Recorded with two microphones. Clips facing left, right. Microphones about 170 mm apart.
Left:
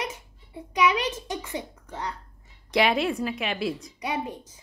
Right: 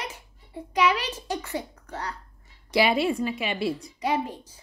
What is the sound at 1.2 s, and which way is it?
Speech, 20° left (ahead or behind).